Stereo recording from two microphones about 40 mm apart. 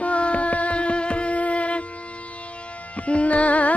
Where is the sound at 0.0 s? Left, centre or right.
Left.